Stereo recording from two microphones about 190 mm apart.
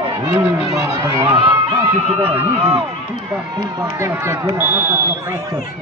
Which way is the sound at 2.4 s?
30° right (ahead or behind).